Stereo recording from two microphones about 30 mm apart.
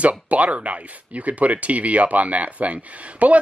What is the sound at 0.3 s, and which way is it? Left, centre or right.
Speech, right.